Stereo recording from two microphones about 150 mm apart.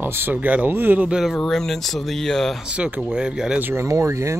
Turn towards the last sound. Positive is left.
turn(degrees=-20)  # may be behind; listen again after turning